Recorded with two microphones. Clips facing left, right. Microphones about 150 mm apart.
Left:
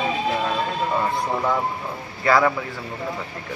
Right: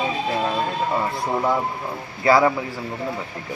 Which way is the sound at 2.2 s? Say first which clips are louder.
Right 2 dB; 25° right (ahead or behind).